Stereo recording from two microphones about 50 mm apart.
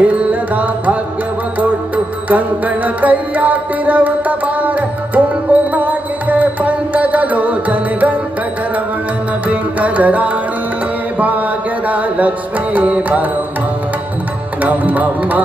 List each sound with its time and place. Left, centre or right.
0.0 s music: right
2.2 s music: right
9.5 s music: right
11.1 s mantra: right
11.9 s carnatic music: right
14.6 s music: right